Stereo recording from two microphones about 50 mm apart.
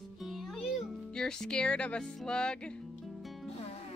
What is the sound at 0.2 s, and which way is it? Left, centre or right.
Music, centre.